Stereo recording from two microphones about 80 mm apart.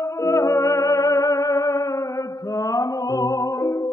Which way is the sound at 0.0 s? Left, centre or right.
Left.